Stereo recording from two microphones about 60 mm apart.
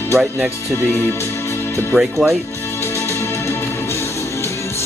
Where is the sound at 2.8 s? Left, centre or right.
Left.